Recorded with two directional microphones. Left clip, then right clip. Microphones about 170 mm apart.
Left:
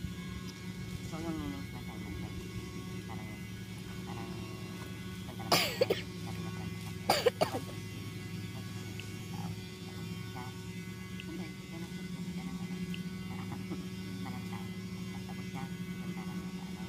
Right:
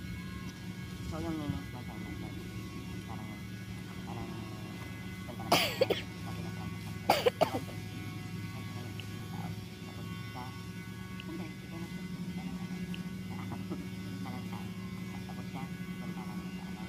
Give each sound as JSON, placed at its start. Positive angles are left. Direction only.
{"t": 5.5, "sound": "cough", "side_deg": 35}
{"t": 7.1, "sound": "cough", "side_deg": 35}